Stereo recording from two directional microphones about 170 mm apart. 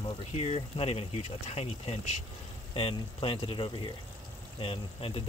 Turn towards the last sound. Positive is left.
turn(degrees=30)  # may be behind; listen again after turning